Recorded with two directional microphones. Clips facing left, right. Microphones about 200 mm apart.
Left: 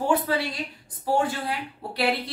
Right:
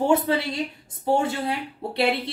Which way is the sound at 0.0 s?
25° right (ahead or behind).